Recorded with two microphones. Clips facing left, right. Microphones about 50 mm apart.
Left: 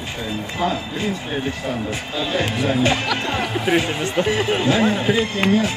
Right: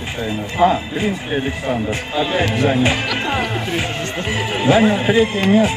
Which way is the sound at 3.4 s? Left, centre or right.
Centre.